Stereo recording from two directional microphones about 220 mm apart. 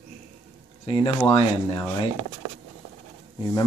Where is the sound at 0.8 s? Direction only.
25° left (ahead or behind).